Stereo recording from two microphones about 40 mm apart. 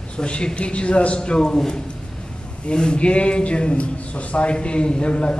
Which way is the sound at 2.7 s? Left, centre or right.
Left.